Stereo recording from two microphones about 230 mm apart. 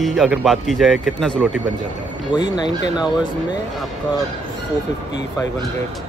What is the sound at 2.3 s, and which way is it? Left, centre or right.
Music, centre.